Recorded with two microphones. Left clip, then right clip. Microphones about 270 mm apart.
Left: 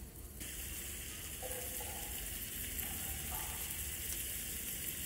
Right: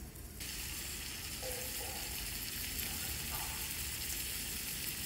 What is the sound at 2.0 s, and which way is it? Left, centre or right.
Sizzle, centre.